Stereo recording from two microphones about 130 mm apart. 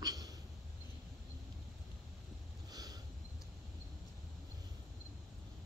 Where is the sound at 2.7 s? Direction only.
30° right (ahead or behind).